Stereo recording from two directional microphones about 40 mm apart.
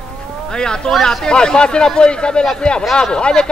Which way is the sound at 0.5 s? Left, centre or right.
Centre.